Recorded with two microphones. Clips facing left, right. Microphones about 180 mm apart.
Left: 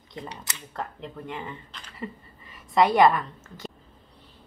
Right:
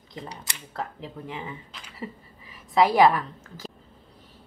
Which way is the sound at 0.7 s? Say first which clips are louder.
Right 1 dB; centre (ahead or behind).